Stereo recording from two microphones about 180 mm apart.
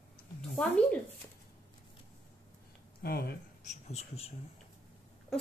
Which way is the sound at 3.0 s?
60° left (ahead or behind).